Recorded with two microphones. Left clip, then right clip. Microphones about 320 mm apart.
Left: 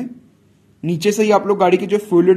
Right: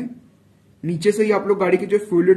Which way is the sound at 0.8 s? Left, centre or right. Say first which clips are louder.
Left 2 dB; left.